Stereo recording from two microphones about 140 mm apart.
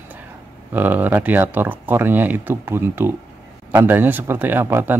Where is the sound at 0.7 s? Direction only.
15° right (ahead or behind).